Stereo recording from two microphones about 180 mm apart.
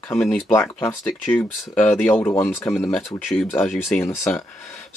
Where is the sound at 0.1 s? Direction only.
Centre (ahead or behind).